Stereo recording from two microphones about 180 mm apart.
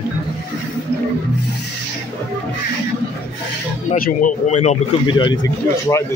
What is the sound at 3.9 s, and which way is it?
Speech, 50° left (ahead or behind).